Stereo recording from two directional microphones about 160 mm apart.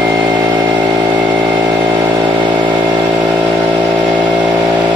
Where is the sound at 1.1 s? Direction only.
10° right (ahead or behind).